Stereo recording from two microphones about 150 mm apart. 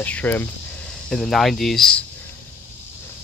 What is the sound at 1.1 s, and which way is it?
Cricket, centre (ahead or behind).